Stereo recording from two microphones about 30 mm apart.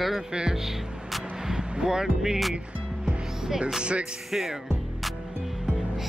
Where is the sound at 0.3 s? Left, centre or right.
Right.